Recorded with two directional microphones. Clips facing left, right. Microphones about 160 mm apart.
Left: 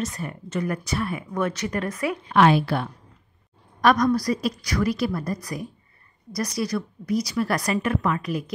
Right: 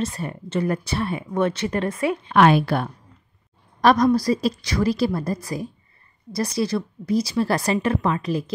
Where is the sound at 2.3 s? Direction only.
55° right (ahead or behind).